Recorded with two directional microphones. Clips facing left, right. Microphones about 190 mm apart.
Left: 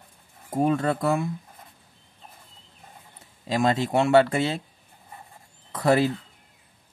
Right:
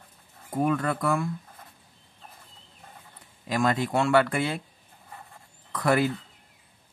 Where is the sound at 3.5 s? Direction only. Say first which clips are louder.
Left 2 dB; 25° left (ahead or behind).